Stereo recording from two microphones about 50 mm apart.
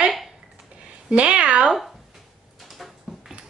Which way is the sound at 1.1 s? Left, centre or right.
Right.